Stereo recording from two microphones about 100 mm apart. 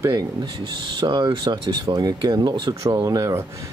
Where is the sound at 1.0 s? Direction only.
50° right (ahead or behind).